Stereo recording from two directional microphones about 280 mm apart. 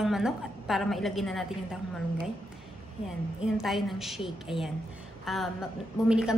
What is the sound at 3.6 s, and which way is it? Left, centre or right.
A woman's voice, centre.